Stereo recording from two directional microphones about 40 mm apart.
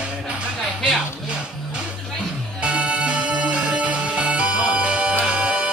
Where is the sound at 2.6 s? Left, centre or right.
Right.